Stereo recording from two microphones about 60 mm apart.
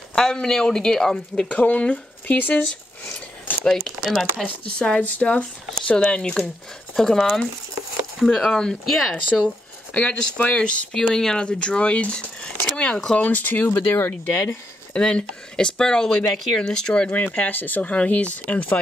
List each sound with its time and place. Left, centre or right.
0.1 s speech: centre; by 2.6 s left
3.0 s a sound: left
3.6 s speech: centre
4.5 s speech: centre
7.0 s speech: centre
8.3 s speech: centre
9.9 s speech: left
11.0 s speech: centre
13.2 s speech: left
13.7 s speech: left
15.0 s speech: centre
17.1 s speech: left